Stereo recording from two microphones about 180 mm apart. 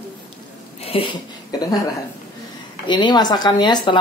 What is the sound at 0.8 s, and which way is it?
Speech, 30° left (ahead or behind).